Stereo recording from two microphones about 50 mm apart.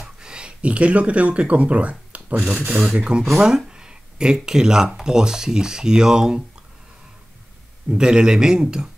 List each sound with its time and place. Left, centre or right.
0.0 s speech: centre
3.0 s speech: centre
7.9 s speech: centre